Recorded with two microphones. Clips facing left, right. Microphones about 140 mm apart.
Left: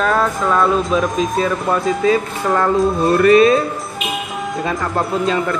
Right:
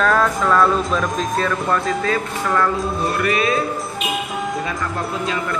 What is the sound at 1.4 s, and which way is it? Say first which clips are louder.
Speech: left 3 dB; 15° left (ahead or behind).